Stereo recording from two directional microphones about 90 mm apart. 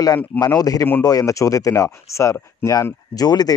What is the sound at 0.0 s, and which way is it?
Speech, 45° left (ahead or behind).